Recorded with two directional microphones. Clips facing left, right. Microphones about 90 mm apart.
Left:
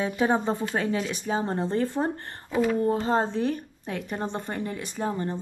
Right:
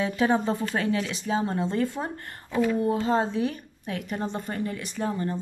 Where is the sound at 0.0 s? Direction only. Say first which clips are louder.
Even; 25° left (ahead or behind).